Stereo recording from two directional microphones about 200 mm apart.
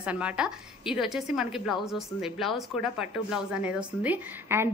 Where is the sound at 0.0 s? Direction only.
5° right (ahead or behind).